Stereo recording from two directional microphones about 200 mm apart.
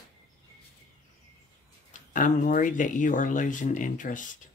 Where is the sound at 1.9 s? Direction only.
40° left (ahead or behind).